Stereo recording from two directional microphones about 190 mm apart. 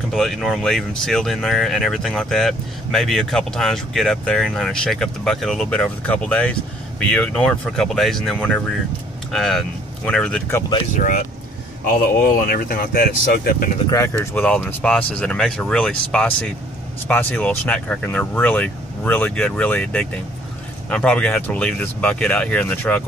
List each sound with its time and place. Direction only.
0.1 s speech: centre (ahead or behind)
11.0 s speech: 45° left (ahead or behind)
13.8 s speech: 15° left (ahead or behind)